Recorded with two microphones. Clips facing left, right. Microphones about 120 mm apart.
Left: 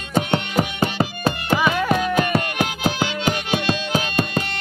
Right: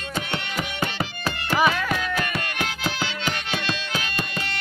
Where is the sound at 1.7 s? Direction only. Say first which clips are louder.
Left 5 dB; 20° left (ahead or behind).